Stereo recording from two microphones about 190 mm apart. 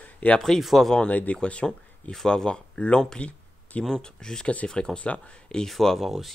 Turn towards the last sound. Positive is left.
turn(degrees=0)  # may be behind; listen again after turning